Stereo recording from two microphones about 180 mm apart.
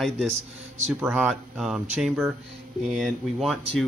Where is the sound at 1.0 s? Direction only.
10° right (ahead or behind).